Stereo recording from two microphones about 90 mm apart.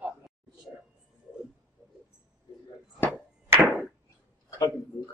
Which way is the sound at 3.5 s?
30° right (ahead or behind).